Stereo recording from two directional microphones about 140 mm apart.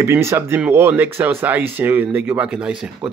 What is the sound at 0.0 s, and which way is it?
Speech, 20° right (ahead or behind).